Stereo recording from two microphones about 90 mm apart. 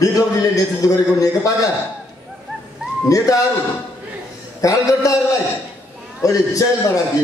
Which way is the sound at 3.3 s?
40° left (ahead or behind).